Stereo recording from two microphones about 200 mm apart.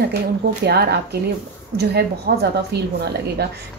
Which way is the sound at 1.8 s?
55° right (ahead or behind).